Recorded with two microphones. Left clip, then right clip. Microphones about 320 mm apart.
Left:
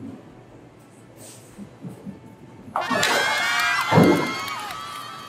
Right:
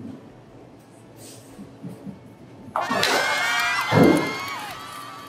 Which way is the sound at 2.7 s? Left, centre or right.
Centre.